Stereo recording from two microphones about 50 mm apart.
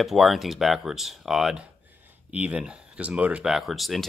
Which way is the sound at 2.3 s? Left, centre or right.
Right.